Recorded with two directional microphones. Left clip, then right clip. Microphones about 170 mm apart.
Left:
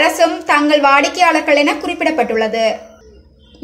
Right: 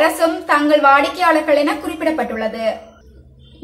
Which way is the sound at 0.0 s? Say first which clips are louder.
Left 2 dB; 30° left (ahead or behind).